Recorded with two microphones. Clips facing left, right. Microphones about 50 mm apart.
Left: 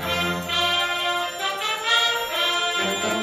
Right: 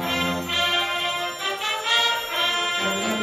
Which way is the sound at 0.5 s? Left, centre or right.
Right.